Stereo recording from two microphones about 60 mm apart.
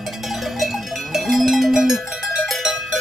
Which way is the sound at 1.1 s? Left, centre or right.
Centre.